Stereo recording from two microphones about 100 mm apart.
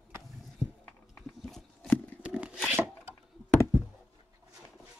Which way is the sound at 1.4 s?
5° left (ahead or behind).